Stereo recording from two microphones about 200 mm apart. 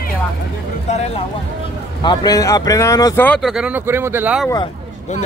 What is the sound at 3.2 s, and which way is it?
Speech, centre (ahead or behind).